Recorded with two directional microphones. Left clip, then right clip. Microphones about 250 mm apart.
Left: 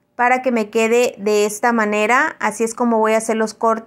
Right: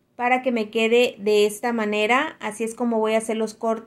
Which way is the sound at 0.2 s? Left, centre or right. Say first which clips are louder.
Left 5 dB; left.